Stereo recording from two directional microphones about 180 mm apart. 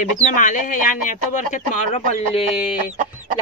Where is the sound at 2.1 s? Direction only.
30° left (ahead or behind).